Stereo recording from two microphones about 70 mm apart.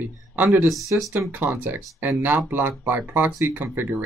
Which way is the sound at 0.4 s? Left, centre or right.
Right.